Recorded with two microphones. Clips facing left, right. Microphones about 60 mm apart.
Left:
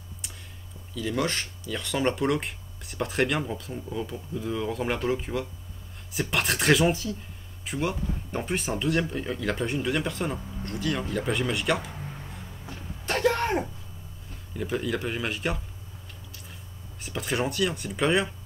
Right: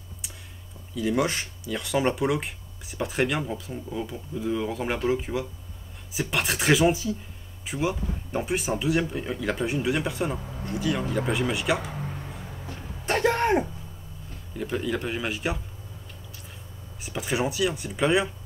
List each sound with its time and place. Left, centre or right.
0.9 s speech: centre
13.0 s a sound: right
14.6 s speech: centre
17.0 s speech: centre